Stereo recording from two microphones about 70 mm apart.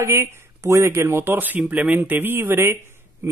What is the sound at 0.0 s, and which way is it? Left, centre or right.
Speech, right.